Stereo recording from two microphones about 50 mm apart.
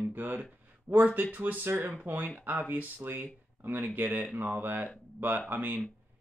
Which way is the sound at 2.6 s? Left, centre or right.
Right.